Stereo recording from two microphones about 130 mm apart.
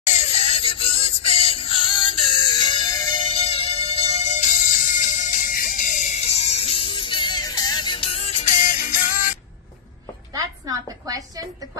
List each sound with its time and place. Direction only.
0.0 s child singing: 60° left (ahead or behind); by 3.2 s 30° left (ahead or behind)
3.3 s music: 50° left (ahead or behind); by 9.4 s 90° left
10.3 s a sound: 30° right (ahead or behind)